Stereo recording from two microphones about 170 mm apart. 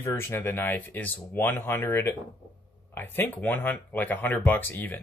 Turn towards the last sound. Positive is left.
turn(degrees=10)  # may be behind; listen again after turning